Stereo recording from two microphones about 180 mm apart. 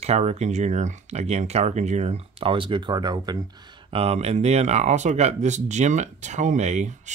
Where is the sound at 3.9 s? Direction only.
35° right (ahead or behind).